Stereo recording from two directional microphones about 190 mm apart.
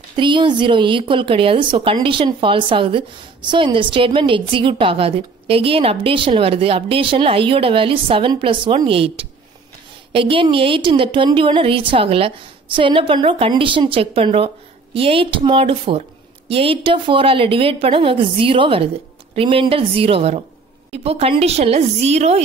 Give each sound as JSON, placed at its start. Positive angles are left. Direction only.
{"t": 0.1, "sound": "a woman's voice", "side_deg": -25}